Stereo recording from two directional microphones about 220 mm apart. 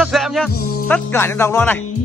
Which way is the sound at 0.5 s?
40° left (ahead or behind).